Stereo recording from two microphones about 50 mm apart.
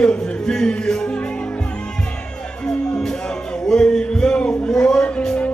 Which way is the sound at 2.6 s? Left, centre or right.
Centre.